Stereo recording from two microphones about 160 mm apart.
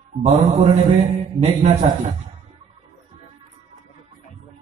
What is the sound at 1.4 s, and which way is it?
Speech, 45° right (ahead or behind).